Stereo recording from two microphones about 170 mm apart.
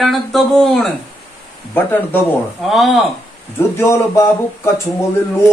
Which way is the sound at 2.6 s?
Centre (ahead or behind).